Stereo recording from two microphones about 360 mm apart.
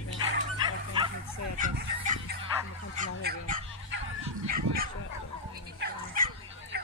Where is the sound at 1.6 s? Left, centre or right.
Right.